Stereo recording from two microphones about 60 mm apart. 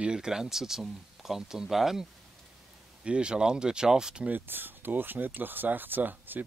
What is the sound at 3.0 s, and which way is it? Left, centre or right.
Speech, centre.